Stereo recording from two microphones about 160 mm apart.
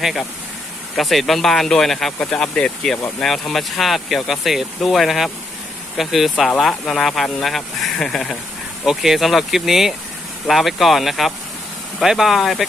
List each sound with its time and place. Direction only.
0.9 s speech: centre (ahead or behind)